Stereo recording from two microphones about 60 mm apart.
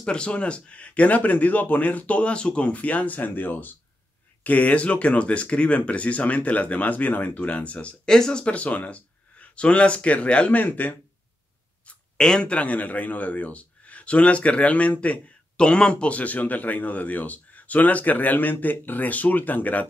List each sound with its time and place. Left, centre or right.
0.0 s a man's voice: centre
12.2 s a man's voice: centre